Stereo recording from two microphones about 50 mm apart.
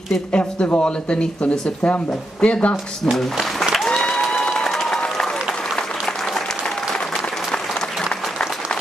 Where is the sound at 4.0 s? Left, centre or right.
Centre.